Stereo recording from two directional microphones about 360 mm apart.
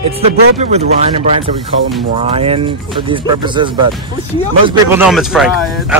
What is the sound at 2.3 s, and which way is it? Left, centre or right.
Speech, centre.